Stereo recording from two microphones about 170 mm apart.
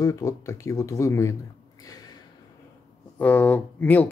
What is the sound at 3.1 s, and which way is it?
Speech, 10° left (ahead or behind).